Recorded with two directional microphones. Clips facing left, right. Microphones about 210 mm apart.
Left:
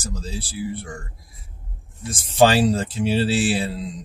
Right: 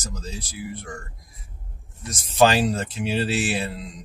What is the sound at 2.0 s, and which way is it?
Speech, 30° left (ahead or behind).